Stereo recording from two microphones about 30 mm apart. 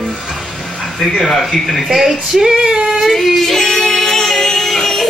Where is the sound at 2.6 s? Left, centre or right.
Right.